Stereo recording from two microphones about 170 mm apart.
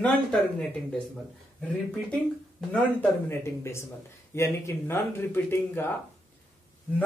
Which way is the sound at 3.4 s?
15° left (ahead or behind).